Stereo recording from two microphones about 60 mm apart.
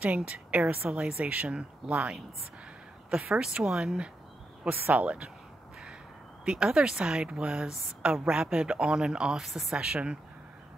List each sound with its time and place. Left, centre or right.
0.0 s a woman's voice: right
0.8 s a woman's voice: centre
3.3 s a woman's voice: centre
4.6 s a woman's voice: right
6.4 s a woman's voice: centre
9.4 s speech: centre
9.8 s a woman's voice: centre